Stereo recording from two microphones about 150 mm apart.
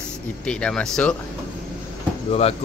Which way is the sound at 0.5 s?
5° left (ahead or behind).